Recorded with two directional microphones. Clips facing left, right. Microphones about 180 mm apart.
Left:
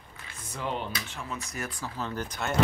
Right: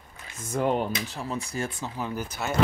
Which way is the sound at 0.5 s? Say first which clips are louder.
Right 8 dB; 50° right (ahead or behind).